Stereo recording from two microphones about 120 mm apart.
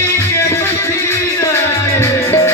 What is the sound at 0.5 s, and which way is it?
Music, 20° left (ahead or behind).